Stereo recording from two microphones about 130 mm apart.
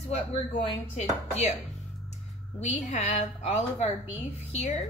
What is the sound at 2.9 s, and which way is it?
A woman's voice, 65° left (ahead or behind).